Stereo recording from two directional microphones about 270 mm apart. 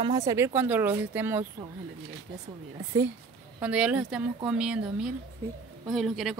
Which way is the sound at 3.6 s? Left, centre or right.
Centre.